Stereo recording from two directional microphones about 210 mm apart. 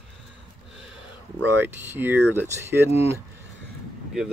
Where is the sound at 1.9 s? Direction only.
10° right (ahead or behind).